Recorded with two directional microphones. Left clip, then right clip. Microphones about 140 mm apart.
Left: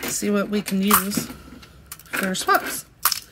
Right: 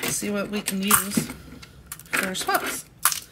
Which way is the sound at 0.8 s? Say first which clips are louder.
Left 2 dB; 5° left (ahead or behind).